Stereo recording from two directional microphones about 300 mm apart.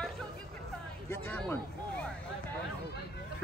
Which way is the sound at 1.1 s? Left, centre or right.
Centre.